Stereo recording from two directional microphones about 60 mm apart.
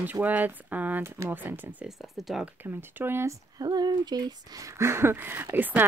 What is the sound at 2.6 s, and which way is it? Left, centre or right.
Speech, right.